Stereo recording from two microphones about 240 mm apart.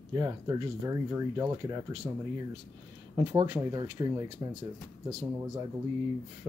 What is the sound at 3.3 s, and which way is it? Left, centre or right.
Speech, centre.